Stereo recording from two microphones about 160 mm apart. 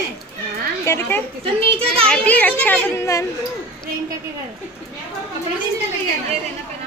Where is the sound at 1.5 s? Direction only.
35° right (ahead or behind).